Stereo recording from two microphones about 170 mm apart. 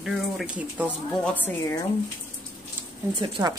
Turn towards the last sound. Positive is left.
turn(degrees=-25)  # may be behind; listen again after turning